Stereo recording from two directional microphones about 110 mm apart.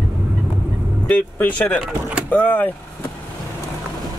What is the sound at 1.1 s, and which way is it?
Speech, 15° left (ahead or behind).